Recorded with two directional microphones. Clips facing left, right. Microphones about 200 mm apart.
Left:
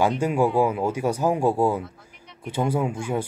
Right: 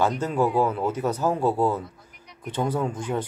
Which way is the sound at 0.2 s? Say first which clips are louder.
Left 2 dB; 10° left (ahead or behind).